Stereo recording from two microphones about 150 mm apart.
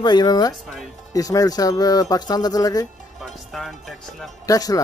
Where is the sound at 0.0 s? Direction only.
30° left (ahead or behind).